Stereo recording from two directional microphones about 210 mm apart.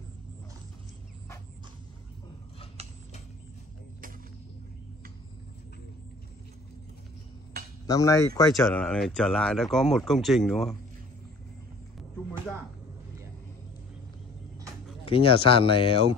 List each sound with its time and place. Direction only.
2.8 s mechanisms: 30° right (ahead or behind)
7.8 s speech: 15° left (ahead or behind)
8.5 s speech: centre (ahead or behind)
15.0 s speech: 25° left (ahead or behind)